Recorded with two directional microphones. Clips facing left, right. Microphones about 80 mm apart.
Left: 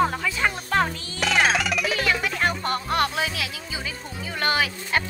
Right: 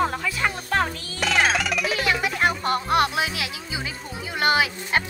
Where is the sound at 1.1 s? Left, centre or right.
Centre.